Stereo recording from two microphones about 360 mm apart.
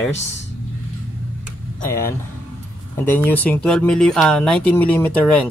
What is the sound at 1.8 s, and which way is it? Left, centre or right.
Speech, centre.